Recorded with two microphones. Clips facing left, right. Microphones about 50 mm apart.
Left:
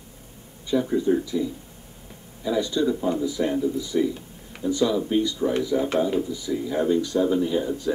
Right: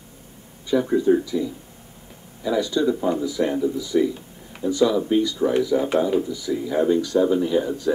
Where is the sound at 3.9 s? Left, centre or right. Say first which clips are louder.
Right 3 dB; centre.